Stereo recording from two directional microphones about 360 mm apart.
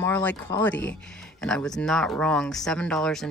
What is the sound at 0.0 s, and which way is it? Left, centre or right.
Speech, centre.